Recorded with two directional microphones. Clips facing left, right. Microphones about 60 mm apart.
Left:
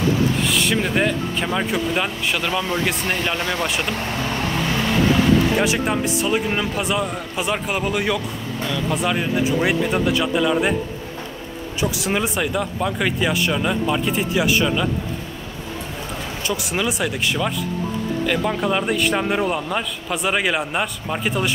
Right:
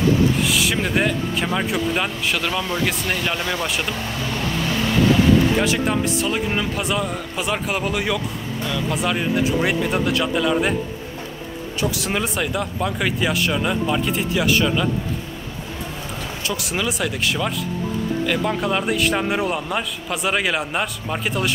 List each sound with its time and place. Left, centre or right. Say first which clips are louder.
0.4 s a man's voice: even; centre
3.1 s speech: left 1 dB; left
5.6 s a man's voice: even; centre
11.8 s a man's voice: left 1 dB; centre
16.4 s a man's voice: left 1 dB; centre